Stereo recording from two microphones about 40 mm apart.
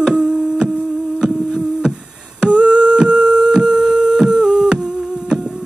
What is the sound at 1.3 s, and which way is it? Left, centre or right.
Hum, centre.